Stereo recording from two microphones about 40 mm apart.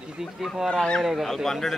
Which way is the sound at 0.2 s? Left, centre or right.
Centre.